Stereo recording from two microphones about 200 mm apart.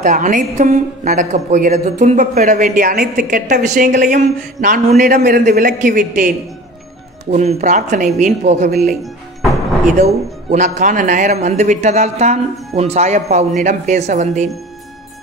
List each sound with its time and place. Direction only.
0.0 s a woman's voice: 40° right (ahead or behind)
10.5 s a woman's voice: 40° right (ahead or behind)